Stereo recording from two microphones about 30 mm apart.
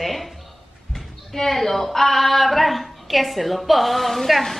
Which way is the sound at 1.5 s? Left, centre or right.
Centre.